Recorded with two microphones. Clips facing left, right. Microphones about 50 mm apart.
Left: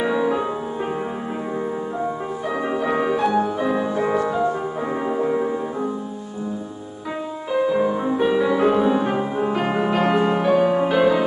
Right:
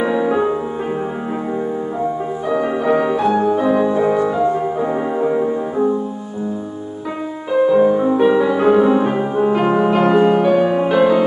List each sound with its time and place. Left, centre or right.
0.0 s music: centre
2.8 s music: centre
5.1 s music: centre
7.7 s music: centre